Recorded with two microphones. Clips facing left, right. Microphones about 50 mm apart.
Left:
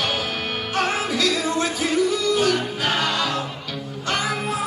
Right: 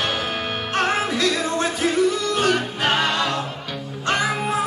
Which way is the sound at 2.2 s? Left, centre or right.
Right.